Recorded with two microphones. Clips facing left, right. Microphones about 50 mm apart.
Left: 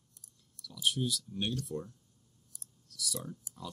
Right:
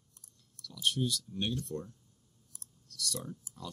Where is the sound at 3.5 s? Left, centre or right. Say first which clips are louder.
Even; right.